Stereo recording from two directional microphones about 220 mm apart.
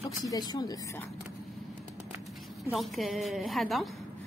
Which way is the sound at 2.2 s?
Centre (ahead or behind).